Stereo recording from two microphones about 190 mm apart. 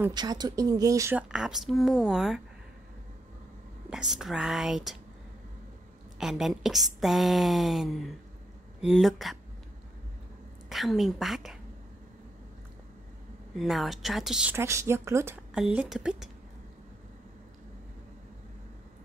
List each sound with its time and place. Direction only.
0.1 s speech: 20° right (ahead or behind)
1.3 s a woman's voice: 5° right (ahead or behind)
3.9 s a woman's voice: centre (ahead or behind)
6.1 s a woman's voice: centre (ahead or behind)
10.7 s a woman's voice: centre (ahead or behind)
13.6 s a woman's voice: centre (ahead or behind)